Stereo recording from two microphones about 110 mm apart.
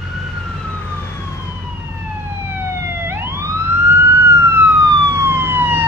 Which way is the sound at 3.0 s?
25° right (ahead or behind).